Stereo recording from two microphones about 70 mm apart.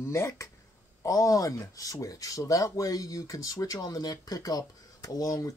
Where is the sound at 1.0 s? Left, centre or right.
Left.